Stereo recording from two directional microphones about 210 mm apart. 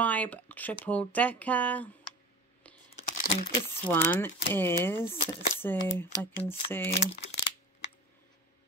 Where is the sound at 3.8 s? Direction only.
10° left (ahead or behind).